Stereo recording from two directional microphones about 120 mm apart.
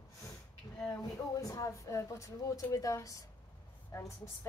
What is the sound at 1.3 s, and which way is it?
Speech, 30° left (ahead or behind).